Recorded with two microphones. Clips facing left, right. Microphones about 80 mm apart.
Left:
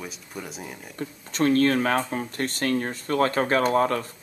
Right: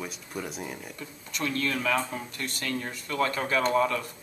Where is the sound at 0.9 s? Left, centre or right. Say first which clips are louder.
Left 8 dB; left.